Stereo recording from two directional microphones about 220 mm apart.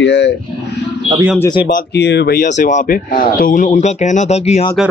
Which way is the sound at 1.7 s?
50° left (ahead or behind).